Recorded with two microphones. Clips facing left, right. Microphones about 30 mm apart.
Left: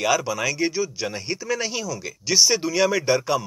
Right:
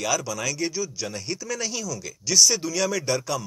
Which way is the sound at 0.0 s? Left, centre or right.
Left.